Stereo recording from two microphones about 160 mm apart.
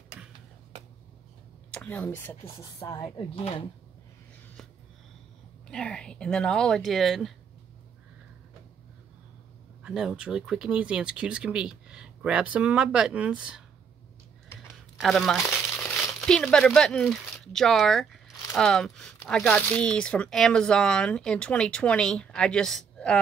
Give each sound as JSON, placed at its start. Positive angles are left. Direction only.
{"t": 1.7, "sound": "speech", "side_deg": 10}
{"t": 5.7, "sound": "speech", "side_deg": 5}
{"t": 9.8, "sound": "speech", "side_deg": -5}
{"t": 15.0, "sound": "speech", "side_deg": 0}